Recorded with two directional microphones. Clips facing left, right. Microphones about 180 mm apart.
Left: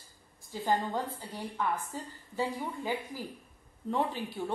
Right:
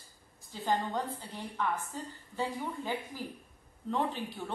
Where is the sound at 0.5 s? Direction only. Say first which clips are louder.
Left 2 dB; 10° left (ahead or behind).